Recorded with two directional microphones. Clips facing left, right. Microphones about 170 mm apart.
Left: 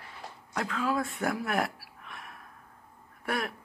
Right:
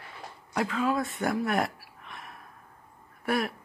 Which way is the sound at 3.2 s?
Centre (ahead or behind).